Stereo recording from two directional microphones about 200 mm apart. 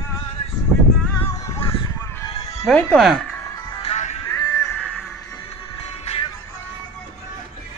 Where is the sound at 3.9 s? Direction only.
35° left (ahead or behind).